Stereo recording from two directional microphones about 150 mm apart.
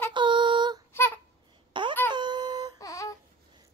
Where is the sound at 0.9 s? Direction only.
15° left (ahead or behind).